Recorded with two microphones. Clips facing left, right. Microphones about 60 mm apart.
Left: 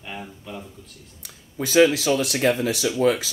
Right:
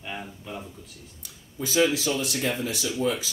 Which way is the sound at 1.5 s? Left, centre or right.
Left.